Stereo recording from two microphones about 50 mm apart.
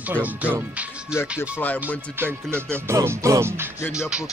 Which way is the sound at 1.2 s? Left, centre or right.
Left.